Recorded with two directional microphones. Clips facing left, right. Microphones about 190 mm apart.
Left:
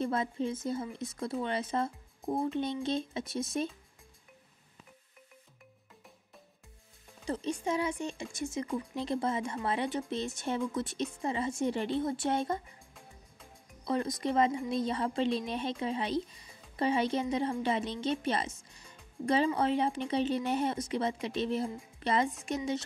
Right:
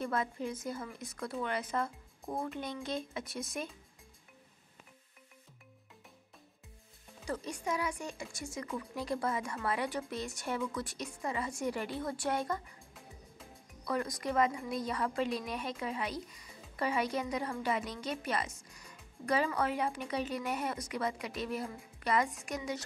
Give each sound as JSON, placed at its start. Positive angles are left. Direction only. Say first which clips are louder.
{"t": 0.0, "sound": "a woman's voice", "louder": "left 4 dB", "side_deg": 25}
{"t": 7.2, "sound": "a woman's voice", "louder": "left 4 dB", "side_deg": 25}
{"t": 13.8, "sound": "a woman's voice", "louder": "left 3 dB", "side_deg": 25}